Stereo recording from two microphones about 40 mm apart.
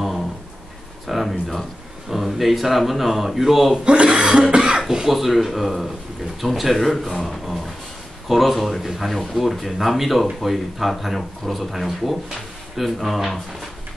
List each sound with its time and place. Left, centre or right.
1.0 s a sound: centre
2.0 s speech: centre
4.1 s cough: centre
5.0 s speech: centre
7.2 s a sound: centre
8.3 s speech: centre